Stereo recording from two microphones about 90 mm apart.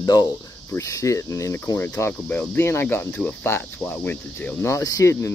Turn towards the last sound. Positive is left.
turn(degrees=35)  # may be behind; listen again after turning